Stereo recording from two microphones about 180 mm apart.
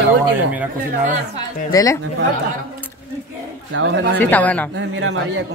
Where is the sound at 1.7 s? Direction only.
20° left (ahead or behind).